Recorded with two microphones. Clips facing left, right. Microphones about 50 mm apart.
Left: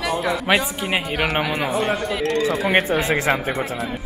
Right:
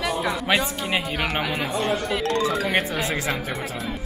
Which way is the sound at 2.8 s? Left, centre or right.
Left.